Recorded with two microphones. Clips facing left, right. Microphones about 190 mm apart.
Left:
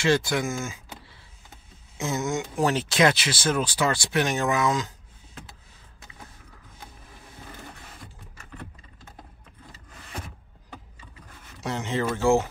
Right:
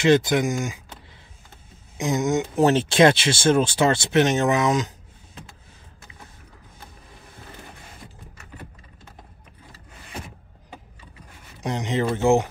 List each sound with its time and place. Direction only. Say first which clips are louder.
0.0 s speech: right 5 dB; 20° right (ahead or behind)
2.0 s speech: right 5 dB; 15° right (ahead or behind)
11.6 s speech: right 3 dB; 15° right (ahead or behind)